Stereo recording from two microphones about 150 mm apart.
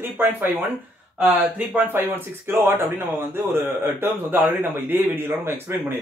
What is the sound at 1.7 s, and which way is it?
A man's voice, 15° right (ahead or behind).